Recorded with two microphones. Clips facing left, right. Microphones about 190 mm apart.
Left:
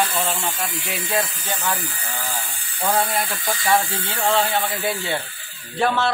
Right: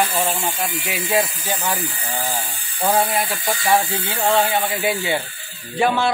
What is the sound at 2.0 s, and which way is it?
Speech, 30° right (ahead or behind).